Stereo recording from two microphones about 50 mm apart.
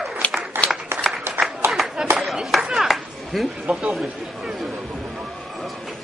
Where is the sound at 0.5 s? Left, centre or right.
Right.